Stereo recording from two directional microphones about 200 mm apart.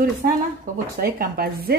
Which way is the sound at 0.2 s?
45° right (ahead or behind).